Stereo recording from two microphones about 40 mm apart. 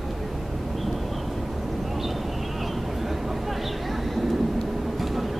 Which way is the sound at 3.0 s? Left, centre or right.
Centre.